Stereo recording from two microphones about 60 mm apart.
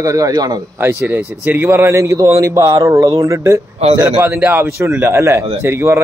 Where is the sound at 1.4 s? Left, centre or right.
Right.